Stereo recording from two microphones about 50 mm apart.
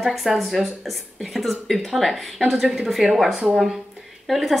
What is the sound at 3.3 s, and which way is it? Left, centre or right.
Speech, right.